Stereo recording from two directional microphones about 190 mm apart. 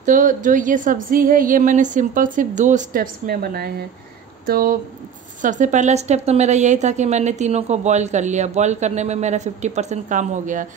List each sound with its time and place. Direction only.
0.0 s a woman's voice: 45° right (ahead or behind)